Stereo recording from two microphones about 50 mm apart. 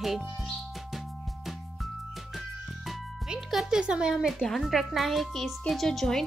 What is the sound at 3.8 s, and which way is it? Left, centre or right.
Speech, centre.